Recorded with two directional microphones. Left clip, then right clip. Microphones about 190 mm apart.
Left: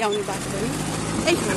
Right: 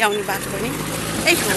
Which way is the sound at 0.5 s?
55° left (ahead or behind).